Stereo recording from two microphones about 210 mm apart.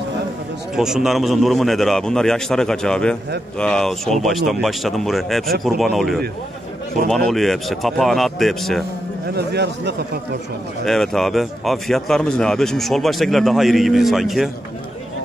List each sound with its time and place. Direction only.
0.7 s speech: centre (ahead or behind)
7.2 s speech: centre (ahead or behind)
9.3 s a man's voice: 55° right (ahead or behind)
10.9 s speech: centre (ahead or behind)